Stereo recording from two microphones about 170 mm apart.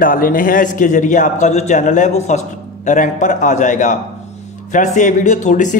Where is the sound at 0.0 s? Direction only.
55° left (ahead or behind).